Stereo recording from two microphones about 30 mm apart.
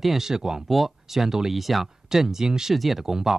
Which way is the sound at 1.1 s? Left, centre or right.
Centre.